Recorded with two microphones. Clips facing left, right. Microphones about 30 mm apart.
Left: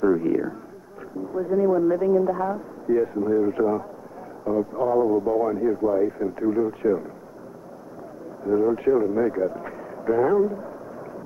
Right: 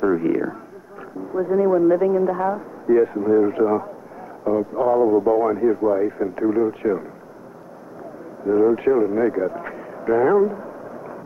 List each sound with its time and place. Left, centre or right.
0.0 s speech: right
8.5 s speech: right
9.4 s a sound: right